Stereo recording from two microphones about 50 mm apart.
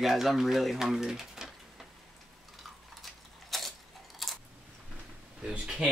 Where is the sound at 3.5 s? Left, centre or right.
Centre.